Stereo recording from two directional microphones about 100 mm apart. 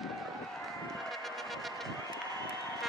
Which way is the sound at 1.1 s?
Centre (ahead or behind).